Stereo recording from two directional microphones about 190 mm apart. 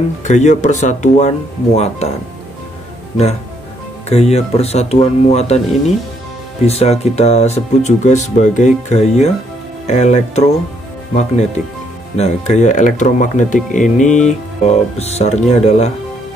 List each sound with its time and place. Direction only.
0.2 s speech: 40° left (ahead or behind)
4.1 s speech: 35° left (ahead or behind)